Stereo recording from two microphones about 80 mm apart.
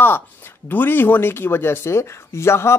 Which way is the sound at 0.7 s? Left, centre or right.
Left.